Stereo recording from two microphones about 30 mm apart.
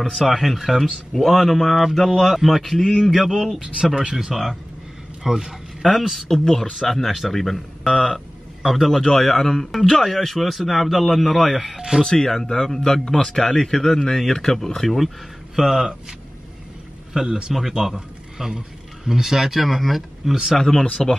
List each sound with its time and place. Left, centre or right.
0.3 s speech: centre
3.9 s a man's voice: right
4.2 s speech: centre
5.2 s a sound: centre
5.9 s speech: centre
6.2 s speech: centre
9.0 s speech: centre
12.0 s speech: centre
15.5 s speech: centre
17.3 s a man's voice: right
17.6 s speech: centre
17.9 s a sound: centre
19.0 s speech: centre
20.5 s speech: centre